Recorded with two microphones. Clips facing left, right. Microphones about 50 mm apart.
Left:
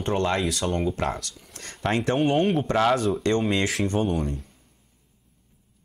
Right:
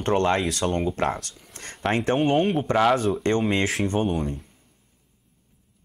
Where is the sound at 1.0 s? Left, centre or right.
Right.